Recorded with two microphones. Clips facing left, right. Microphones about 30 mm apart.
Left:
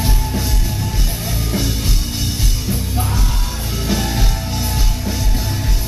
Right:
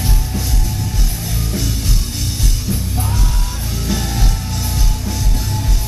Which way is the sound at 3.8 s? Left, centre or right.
Centre.